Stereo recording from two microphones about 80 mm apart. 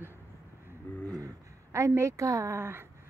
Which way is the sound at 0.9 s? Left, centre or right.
Left.